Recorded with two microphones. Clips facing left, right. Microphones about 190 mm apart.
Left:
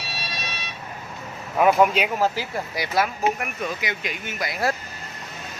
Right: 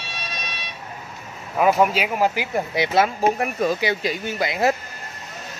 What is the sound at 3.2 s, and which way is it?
Speech, 35° right (ahead or behind).